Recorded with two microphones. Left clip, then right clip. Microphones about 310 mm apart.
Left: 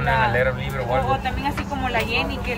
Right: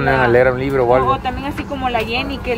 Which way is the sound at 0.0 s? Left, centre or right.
Centre.